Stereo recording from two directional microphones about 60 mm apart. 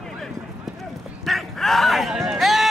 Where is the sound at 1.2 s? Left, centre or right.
Centre.